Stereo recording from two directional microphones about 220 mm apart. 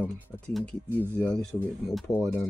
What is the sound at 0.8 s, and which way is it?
Speech, 10° right (ahead or behind).